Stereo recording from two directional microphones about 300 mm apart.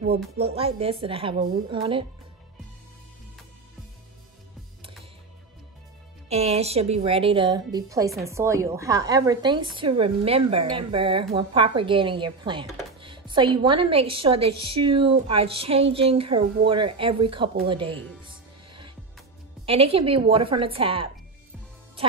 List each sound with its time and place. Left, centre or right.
0.4 s a woman's voice: centre
6.2 s a woman's voice: right
14.5 s a woman's voice: right
14.8 s a woman's voice: centre
19.6 s a woman's voice: centre